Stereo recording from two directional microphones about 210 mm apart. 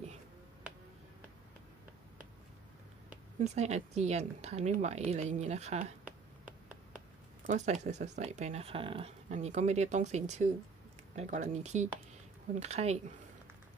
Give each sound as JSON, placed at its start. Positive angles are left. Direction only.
{"t": 3.3, "sound": "speech", "side_deg": -30}
{"t": 7.4, "sound": "speech", "side_deg": -35}